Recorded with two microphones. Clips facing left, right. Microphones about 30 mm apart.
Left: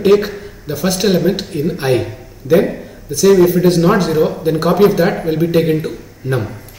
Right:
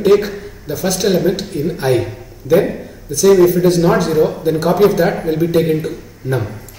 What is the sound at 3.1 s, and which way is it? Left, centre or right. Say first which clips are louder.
Speech: even; centre.